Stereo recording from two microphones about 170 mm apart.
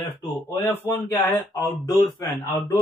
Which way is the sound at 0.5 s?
15° left (ahead or behind).